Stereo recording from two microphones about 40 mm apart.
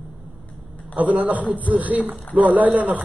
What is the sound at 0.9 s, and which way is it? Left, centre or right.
A man's voice, right.